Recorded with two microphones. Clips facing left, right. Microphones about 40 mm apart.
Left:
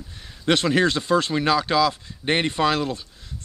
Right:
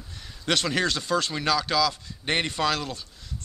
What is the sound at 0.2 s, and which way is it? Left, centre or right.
Speech, left.